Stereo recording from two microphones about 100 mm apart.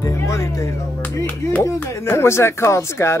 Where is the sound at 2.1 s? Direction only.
25° left (ahead or behind).